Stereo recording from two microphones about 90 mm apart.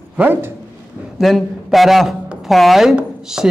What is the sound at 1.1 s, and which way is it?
A man's voice, centre (ahead or behind).